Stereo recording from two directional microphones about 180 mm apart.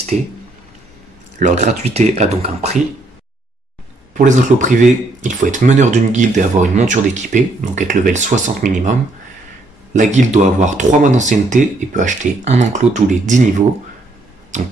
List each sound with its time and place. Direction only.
0.1 s speech: 45° right (ahead or behind)
1.4 s speech: 40° right (ahead or behind)
4.1 s speech: 45° right (ahead or behind)
9.9 s speech: 40° right (ahead or behind)
14.5 s finger snapping: 40° right (ahead or behind)